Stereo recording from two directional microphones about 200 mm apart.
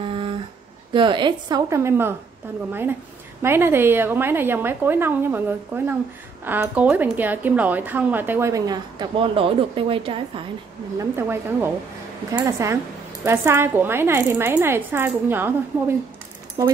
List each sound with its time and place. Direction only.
0.0 s a sound: 25° right (ahead or behind)
0.9 s a woman's voice: 25° right (ahead or behind)
11.0 s a woman's voice: 10° right (ahead or behind)
16.6 s a woman's voice: 15° right (ahead or behind)